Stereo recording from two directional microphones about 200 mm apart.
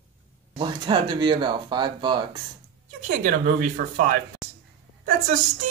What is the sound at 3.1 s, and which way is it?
Speech, 45° right (ahead or behind).